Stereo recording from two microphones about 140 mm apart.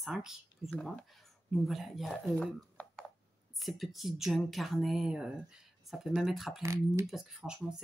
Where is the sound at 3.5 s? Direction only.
Centre (ahead or behind).